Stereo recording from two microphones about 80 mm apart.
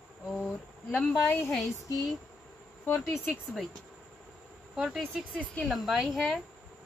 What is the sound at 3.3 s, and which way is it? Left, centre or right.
Speech, centre.